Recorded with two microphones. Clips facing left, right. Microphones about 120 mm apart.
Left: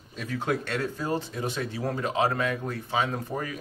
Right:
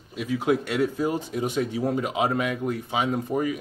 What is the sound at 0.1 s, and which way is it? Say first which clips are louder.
Speech: right 5 dB; 10° right (ahead or behind).